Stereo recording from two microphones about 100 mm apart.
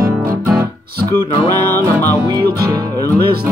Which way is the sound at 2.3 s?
45° right (ahead or behind).